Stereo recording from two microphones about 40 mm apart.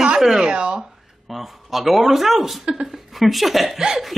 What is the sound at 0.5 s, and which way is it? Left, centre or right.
Speech, right.